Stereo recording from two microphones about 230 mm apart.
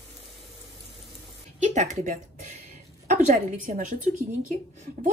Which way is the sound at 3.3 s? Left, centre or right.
Right.